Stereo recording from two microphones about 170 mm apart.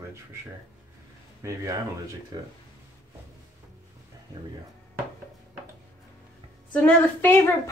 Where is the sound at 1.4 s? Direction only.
20° right (ahead or behind).